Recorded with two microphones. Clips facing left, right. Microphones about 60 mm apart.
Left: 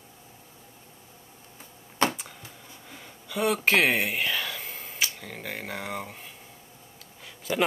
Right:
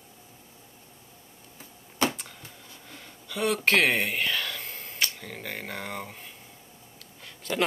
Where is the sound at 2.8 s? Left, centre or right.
Centre.